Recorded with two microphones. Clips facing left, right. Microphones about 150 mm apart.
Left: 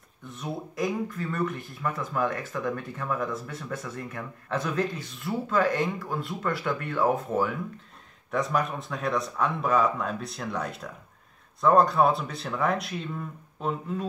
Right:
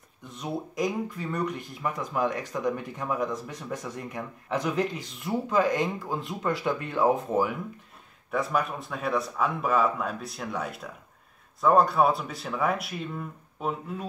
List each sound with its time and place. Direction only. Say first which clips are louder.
0.2 s speech: right 2 dB; 20° right (ahead or behind)
8.3 s speech: left 1 dB; 5° right (ahead or behind)